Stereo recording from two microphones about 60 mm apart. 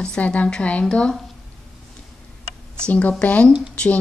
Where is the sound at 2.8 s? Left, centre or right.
Left.